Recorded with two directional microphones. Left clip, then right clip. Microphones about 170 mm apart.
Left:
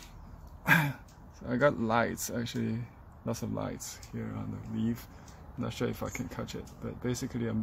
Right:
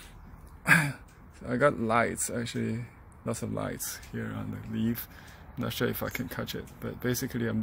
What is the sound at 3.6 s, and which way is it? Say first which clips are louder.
Speech: right 3 dB; 10° right (ahead or behind).